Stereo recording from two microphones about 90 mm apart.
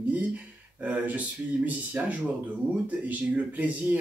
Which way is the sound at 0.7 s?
20° right (ahead or behind).